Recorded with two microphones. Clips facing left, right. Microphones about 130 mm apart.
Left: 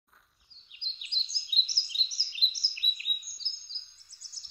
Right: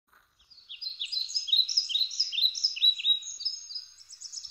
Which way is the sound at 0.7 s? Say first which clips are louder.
Right 1 dB; 15° right (ahead or behind).